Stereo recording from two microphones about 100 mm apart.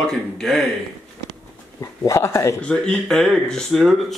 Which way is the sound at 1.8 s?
30° left (ahead or behind).